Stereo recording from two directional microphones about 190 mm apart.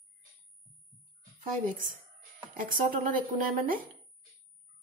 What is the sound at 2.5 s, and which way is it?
Speech, 45° right (ahead or behind).